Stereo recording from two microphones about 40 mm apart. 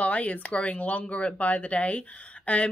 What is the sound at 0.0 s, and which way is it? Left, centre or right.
Speech, left.